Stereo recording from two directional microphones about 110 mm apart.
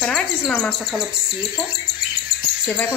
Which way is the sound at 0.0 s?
Centre (ahead or behind).